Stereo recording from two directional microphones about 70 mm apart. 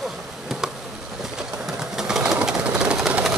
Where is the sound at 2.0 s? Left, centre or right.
Centre.